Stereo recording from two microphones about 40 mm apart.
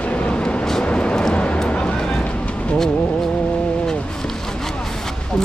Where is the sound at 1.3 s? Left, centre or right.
Left.